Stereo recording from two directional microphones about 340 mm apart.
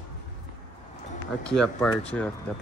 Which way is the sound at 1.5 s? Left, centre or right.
Centre.